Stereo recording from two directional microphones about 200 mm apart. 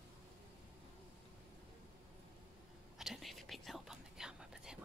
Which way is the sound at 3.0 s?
Centre (ahead or behind).